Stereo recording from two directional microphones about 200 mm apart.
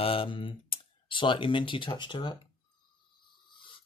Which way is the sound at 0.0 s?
25° left (ahead or behind).